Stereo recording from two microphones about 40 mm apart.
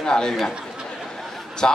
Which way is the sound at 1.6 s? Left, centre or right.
Left.